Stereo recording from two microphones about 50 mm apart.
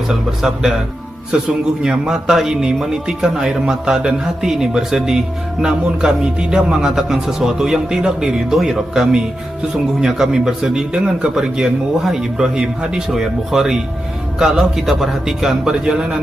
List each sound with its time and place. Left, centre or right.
0.4 s a man's voice: centre
1.3 s speech: right
1.8 s a man's voice: centre